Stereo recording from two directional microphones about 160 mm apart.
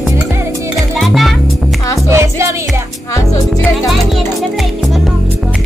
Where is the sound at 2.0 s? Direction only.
15° right (ahead or behind).